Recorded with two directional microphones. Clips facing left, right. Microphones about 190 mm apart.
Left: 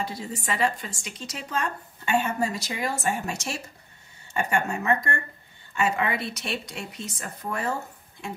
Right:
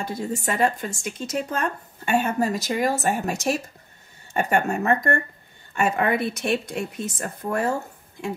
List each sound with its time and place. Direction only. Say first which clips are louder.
0.0 s speech: right 5 dB; 50° right (ahead or behind)